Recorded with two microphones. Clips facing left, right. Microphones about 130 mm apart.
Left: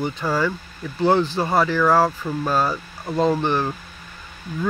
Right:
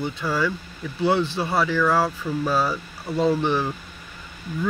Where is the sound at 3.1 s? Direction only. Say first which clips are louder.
Left 1 dB; 45° left (ahead or behind).